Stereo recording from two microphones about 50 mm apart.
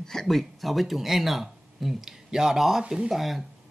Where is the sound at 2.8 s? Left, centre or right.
Centre.